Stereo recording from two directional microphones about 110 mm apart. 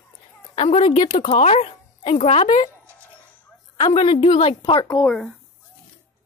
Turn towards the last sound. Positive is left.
turn(degrees=45)  # may be behind; listen again after turning